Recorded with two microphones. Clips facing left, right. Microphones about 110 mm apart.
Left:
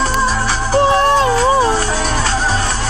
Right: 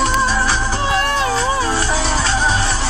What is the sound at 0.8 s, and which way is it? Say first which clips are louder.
Music: left 6 dB; 35° left (ahead or behind).